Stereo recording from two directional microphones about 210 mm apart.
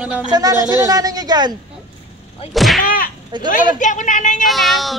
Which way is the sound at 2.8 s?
40° left (ahead or behind).